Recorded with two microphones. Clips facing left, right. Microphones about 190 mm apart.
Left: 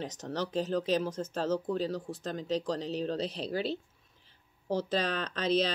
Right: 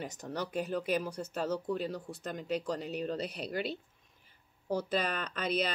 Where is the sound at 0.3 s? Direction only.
10° right (ahead or behind).